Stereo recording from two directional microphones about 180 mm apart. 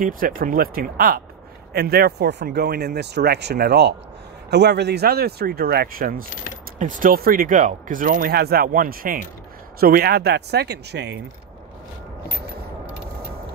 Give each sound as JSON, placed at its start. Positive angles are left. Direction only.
{"t": 0.0, "sound": "speech", "side_deg": -50}